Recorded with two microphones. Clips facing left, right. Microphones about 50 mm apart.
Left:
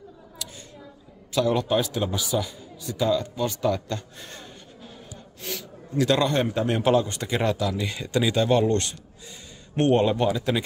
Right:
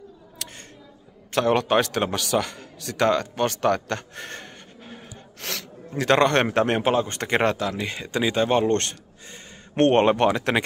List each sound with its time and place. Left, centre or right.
0.4 s a sound: right
1.3 s a man's voice: right
5.4 s gasp: right
5.9 s a man's voice: right
6.7 s speech: right
7.2 s a man's voice: right
7.7 s speech: right
8.7 s speech: right